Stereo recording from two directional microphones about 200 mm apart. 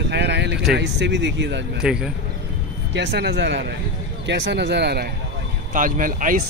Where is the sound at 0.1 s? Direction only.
60° right (ahead or behind).